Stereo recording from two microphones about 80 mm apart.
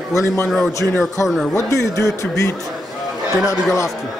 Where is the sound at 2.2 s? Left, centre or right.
Left.